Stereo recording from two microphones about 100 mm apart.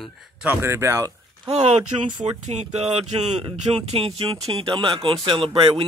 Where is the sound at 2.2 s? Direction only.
90° right; by 4.1 s 75° right (ahead or behind).